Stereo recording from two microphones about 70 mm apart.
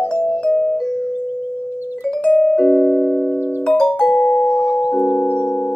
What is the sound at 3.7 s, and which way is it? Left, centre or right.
Music, centre.